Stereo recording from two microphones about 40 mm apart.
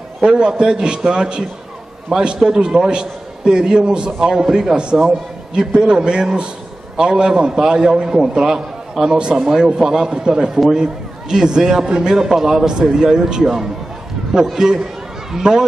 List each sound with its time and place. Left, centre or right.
0.2 s a man's voice: right